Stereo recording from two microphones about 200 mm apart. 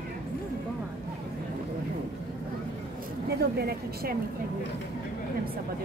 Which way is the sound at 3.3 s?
55° right (ahead or behind).